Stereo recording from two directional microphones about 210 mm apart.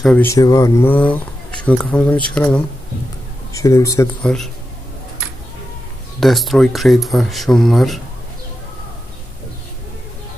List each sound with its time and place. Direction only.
0.0 s speech: 10° left (ahead or behind)
4.2 s speech: 5° left (ahead or behind)
6.1 s speech: centre (ahead or behind)